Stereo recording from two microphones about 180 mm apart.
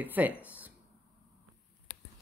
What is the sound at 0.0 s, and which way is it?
Speech, 10° right (ahead or behind).